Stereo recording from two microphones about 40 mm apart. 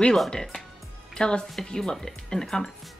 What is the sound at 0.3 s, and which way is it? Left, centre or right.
Speech, centre.